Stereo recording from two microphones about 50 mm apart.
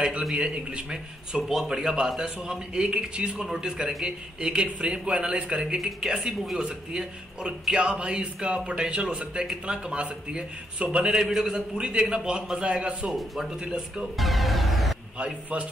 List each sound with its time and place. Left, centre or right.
0.3 s a man's voice: right
5.8 s speech: centre; by 11.1 s right
11.1 s a man's voice: centre
14.1 s music: centre